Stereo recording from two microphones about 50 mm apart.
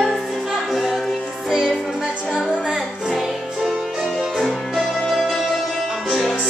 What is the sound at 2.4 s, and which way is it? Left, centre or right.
Music, centre.